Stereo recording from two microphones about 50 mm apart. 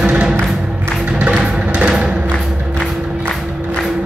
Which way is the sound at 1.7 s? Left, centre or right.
Right.